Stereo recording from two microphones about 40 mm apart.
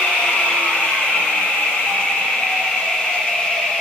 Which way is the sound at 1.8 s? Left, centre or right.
Centre.